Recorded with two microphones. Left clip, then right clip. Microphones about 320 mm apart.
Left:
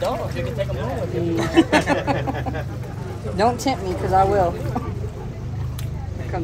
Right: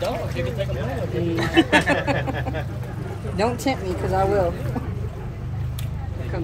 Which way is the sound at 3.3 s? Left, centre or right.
Centre.